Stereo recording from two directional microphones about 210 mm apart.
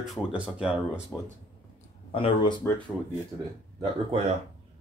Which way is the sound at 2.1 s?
25° left (ahead or behind).